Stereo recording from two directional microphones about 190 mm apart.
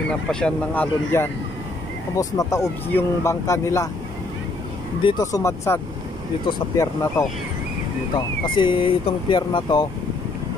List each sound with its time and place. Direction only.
0.3 s speech: 5° left (ahead or behind)
5.2 s speech: 15° left (ahead or behind)
8.5 s speech: 25° left (ahead or behind)